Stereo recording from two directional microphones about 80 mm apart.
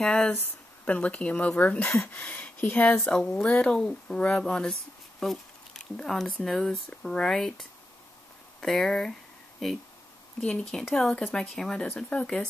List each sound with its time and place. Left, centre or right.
0.0 s speech: centre
5.2 s a sound: centre
5.9 s speech: centre